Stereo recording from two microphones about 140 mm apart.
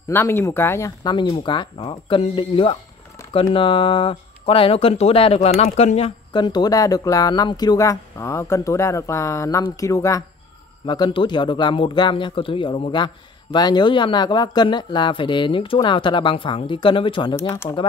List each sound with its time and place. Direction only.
0.1 s speech: 15° left (ahead or behind)
1.1 s a man's voice: 35° left (ahead or behind)
10.9 s a man's voice: 35° left (ahead or behind)
17.4 s speech: 20° left (ahead or behind)